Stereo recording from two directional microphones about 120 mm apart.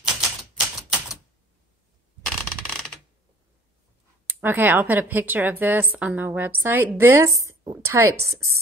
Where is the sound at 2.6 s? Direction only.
5° left (ahead or behind).